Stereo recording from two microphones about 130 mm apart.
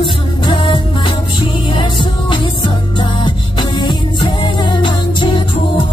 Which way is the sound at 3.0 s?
35° left (ahead or behind).